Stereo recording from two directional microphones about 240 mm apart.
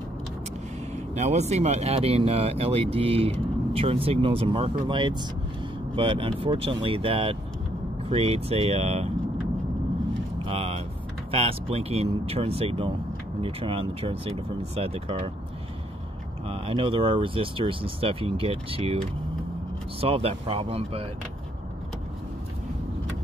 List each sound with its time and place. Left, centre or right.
0.9 s speech: right
10.4 s vehicle: right
11.3 s speech: right
16.4 s speech: right